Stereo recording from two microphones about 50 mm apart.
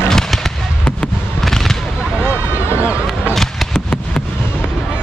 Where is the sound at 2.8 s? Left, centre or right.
Right.